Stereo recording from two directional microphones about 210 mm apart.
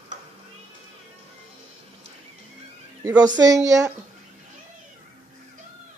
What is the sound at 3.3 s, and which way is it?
Speech, 15° right (ahead or behind).